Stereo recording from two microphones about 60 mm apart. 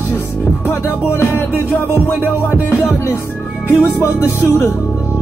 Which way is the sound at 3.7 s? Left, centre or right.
Left.